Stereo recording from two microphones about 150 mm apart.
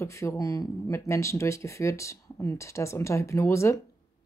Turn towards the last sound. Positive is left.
turn(degrees=20)  # may be behind; listen again after turning